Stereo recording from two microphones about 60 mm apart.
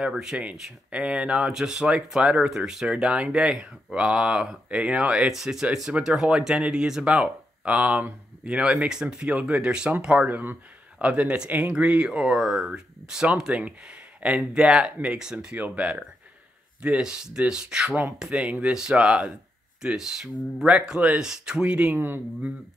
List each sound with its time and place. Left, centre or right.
0.0 s speech: centre
5.3 s speech: centre
15.3 s speech: right
21.9 s speech: right